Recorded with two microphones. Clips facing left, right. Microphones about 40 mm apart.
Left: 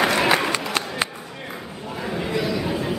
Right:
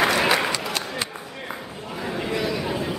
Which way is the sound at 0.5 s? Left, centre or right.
Left.